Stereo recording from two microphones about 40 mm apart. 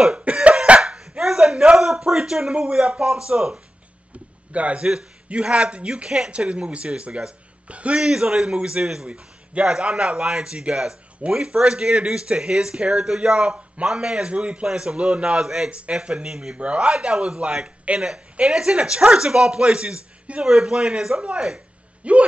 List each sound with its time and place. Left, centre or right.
0.1 s cough: right
1.2 s a sound: centre
2.5 s speech: right
6.0 s a man's voice: centre
6.3 s speech: right
8.0 s a man's voice: centre
15.4 s a man's voice: centre
15.9 s speech: right
17.9 s speech: right
18.5 s speech: centre
20.4 s a man's voice: centre; by 22.2 s right